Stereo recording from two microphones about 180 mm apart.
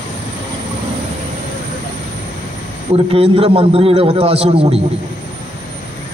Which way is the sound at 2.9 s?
30° right (ahead or behind).